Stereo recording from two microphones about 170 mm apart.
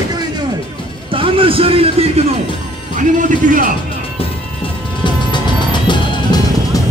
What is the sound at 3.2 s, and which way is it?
Speech, 50° right (ahead or behind).